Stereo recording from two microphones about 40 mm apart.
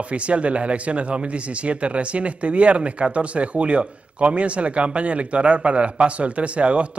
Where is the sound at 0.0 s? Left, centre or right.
Right.